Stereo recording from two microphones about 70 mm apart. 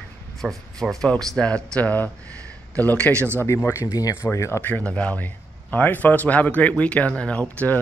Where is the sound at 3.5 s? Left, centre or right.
Left.